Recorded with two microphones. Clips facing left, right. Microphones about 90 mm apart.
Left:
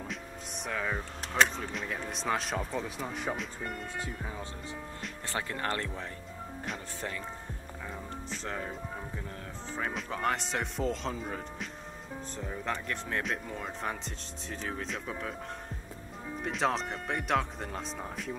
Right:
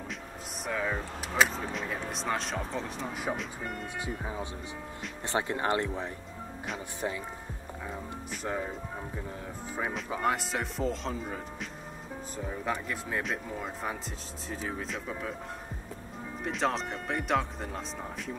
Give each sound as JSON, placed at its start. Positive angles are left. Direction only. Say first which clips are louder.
{"t": 0.7, "sound": "speech", "louder": "right 2 dB", "side_deg": 0}
{"t": 4.1, "sound": "speech", "louder": "right 4 dB", "side_deg": -10}
{"t": 7.9, "sound": "speech", "louder": "even", "side_deg": -5}
{"t": 9.9, "sound": "speech", "louder": "right 2 dB", "side_deg": -5}
{"t": 16.4, "sound": "speech", "louder": "even", "side_deg": 0}